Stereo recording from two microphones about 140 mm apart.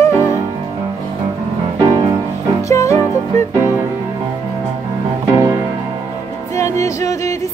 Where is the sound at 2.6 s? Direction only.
25° left (ahead or behind).